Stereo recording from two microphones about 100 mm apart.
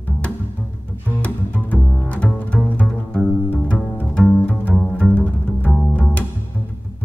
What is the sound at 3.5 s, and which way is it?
Cello, 15° left (ahead or behind).